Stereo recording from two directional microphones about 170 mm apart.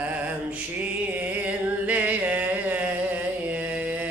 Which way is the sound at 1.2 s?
10° right (ahead or behind).